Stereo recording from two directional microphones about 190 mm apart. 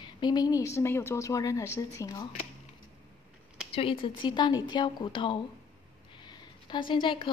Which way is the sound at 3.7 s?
30° left (ahead or behind).